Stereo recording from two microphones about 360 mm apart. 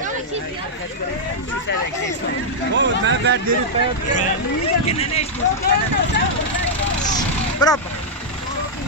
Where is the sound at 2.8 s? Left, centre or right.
Right.